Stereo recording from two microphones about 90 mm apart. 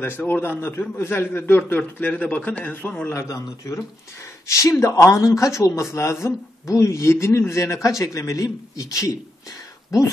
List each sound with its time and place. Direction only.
0.0 s a man's voice: 20° left (ahead or behind)
3.1 s speech: 35° left (ahead or behind)